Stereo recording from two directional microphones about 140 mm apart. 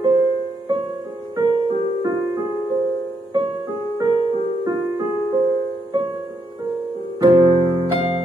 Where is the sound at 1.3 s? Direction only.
30° right (ahead or behind).